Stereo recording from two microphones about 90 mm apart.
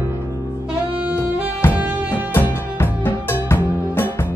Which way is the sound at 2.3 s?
25° left (ahead or behind).